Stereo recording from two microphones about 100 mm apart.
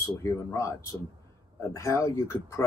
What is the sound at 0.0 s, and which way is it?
Speech, 30° left (ahead or behind).